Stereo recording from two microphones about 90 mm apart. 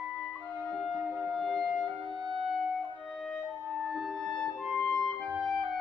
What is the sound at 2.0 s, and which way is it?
Music, 55° right (ahead or behind).